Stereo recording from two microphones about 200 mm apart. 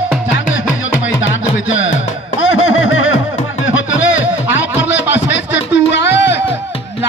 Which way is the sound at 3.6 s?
70° left (ahead or behind).